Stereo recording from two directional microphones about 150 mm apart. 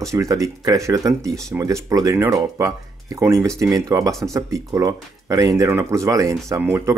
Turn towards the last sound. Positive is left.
turn(degrees=-15)  # may be behind; listen again after turning